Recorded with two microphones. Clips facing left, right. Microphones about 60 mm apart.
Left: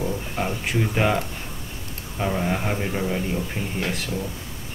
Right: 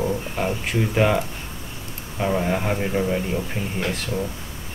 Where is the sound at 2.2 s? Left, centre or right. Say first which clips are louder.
Right 2 dB; centre.